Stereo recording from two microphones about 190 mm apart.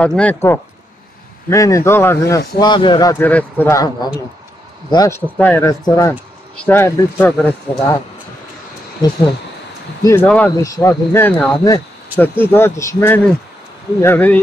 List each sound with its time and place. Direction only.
0.0 s a man's voice: 5° left (ahead or behind)
3.3 s speech: 10° left (ahead or behind)
10.0 s speech: 10° left (ahead or behind)